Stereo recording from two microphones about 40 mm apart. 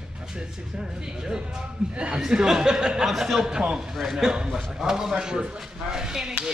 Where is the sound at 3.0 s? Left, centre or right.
Centre.